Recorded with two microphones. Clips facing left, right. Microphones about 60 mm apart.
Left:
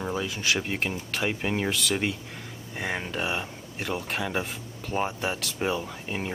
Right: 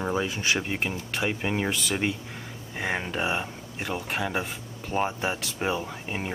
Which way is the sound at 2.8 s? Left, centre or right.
Centre.